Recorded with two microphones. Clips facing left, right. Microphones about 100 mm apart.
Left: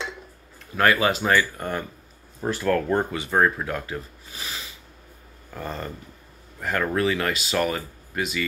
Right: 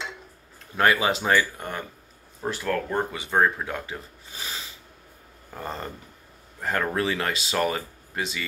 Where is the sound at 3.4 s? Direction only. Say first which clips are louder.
Left 1 dB; 20° right (ahead or behind).